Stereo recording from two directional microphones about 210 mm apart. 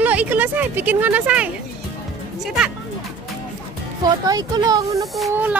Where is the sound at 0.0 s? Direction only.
5° right (ahead or behind).